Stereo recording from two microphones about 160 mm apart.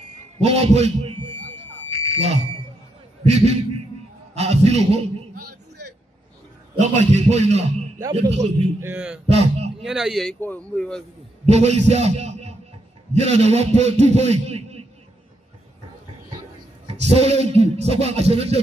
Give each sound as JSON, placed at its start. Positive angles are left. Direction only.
{"t": 0.4, "sound": "a man's voice", "side_deg": -40}
{"t": 1.9, "sound": "smoke detector", "side_deg": -40}
{"t": 3.3, "sound": "a man's voice", "side_deg": -40}
{"t": 4.3, "sound": "a sound", "side_deg": -40}
{"t": 6.7, "sound": "a man's voice", "side_deg": -45}
{"t": 8.8, "sound": "a man's voice", "side_deg": -10}
{"t": 9.3, "sound": "a sound", "side_deg": -40}
{"t": 9.8, "sound": "speech", "side_deg": -5}
{"t": 11.4, "sound": "a man's voice", "side_deg": -40}
{"t": 11.9, "sound": "music", "side_deg": -40}
{"t": 13.1, "sound": "a man's voice", "side_deg": -40}
{"t": 16.8, "sound": "a man's voice", "side_deg": -40}